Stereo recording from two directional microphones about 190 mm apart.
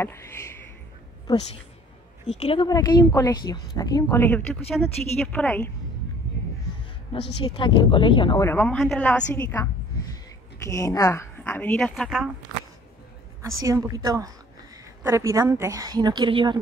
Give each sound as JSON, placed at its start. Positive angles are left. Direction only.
{"t": 0.0, "sound": "a woman's voice", "side_deg": 15}
{"t": 2.2, "sound": "a woman's voice", "side_deg": 30}
{"t": 7.1, "sound": "speech", "side_deg": 25}
{"t": 8.5, "sound": "a woman's voice", "side_deg": 10}
{"t": 13.7, "sound": "a woman's voice", "side_deg": -15}